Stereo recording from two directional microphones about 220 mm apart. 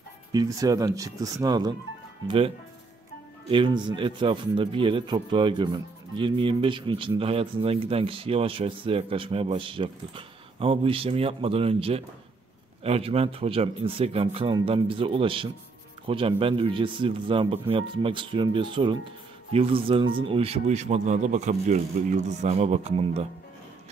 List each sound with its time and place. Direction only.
0.3 s speech: 15° right (ahead or behind)